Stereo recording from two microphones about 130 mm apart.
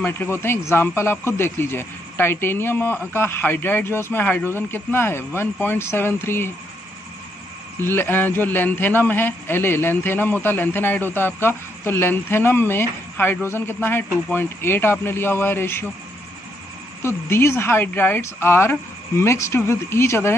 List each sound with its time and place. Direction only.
0.0 s a man's voice: 15° left (ahead or behind)
7.8 s a man's voice: 15° left (ahead or behind)
17.0 s speech: 20° left (ahead or behind)